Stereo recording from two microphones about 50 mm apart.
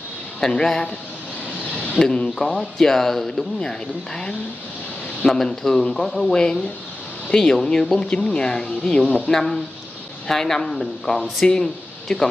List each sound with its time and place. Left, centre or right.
0.4 s speech: centre
2.0 s speech: centre
5.2 s speech: centre
6.3 s speech: centre
9.0 s speech: left
9.3 s speech: centre